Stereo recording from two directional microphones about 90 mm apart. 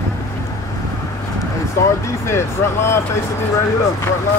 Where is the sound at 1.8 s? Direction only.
30° left (ahead or behind).